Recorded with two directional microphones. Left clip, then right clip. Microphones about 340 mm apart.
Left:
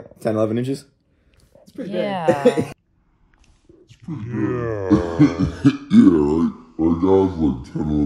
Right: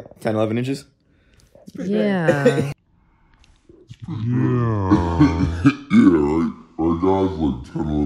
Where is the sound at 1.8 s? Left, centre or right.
Right.